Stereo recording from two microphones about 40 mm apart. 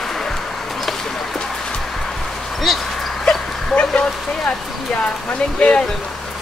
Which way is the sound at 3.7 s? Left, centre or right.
Left.